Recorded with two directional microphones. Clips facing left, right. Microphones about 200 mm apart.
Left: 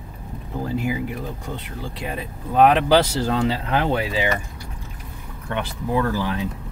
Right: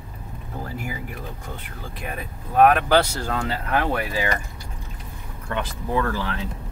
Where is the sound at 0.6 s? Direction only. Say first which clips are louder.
Left 8 dB; 15° left (ahead or behind).